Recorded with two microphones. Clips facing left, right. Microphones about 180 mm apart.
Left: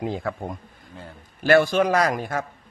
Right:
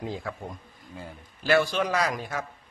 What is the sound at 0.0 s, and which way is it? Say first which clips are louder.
A man's voice: left 6 dB; 60° left (ahead or behind).